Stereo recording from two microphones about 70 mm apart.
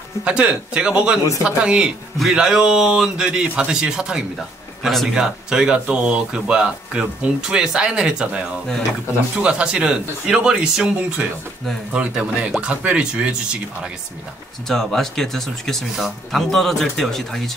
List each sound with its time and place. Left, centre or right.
0.2 s speech: centre
14.7 s speech: centre